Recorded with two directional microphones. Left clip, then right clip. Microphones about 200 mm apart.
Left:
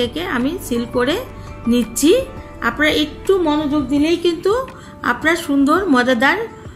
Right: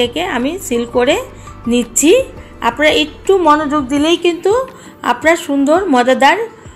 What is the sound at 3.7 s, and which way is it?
Speech, 55° right (ahead or behind).